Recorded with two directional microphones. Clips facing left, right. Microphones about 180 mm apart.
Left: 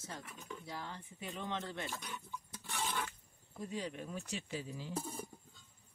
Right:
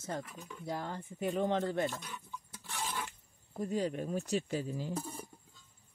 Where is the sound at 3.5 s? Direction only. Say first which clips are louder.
Right 8 dB; 50° right (ahead or behind).